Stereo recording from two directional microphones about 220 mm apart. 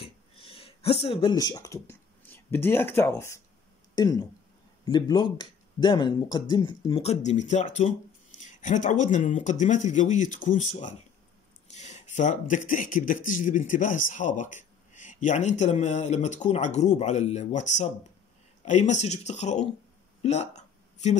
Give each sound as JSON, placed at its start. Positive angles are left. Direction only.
{"t": 0.0, "sound": "a sound", "side_deg": 25}
{"t": 3.9, "sound": "speech", "side_deg": 15}
{"t": 20.2, "sound": "hiccup", "side_deg": 30}